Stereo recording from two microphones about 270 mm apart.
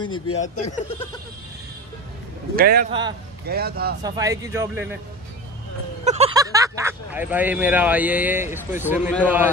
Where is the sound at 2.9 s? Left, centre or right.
Centre.